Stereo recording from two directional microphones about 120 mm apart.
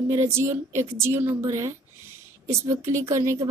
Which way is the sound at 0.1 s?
20° right (ahead or behind).